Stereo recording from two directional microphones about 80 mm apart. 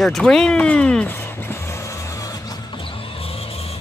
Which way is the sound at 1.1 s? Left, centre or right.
Left.